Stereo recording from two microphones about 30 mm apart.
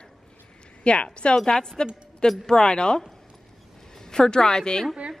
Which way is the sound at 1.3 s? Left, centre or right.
Left.